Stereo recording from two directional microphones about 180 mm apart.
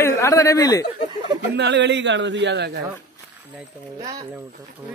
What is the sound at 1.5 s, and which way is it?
A man's voice, 75° right (ahead or behind).